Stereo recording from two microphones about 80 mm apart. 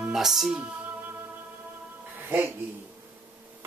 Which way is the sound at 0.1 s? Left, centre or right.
Centre.